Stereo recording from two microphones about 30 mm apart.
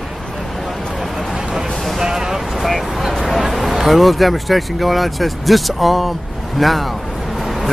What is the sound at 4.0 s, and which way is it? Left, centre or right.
Speech, centre.